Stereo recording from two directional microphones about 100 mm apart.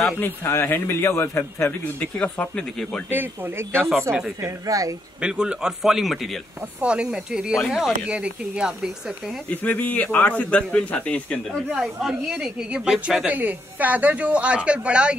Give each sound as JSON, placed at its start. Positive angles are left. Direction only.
{"t": 0.2, "sound": "a man's voice", "side_deg": 20}
{"t": 3.1, "sound": "speech", "side_deg": -20}
{"t": 5.2, "sound": "a man's voice", "side_deg": -10}
{"t": 9.5, "sound": "a man's voice", "side_deg": 15}
{"t": 11.7, "sound": "speech", "side_deg": 0}